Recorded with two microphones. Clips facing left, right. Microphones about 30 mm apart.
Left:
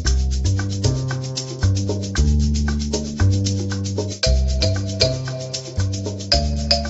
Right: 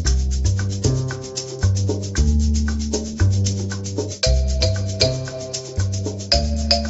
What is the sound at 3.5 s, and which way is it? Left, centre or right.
Music, centre.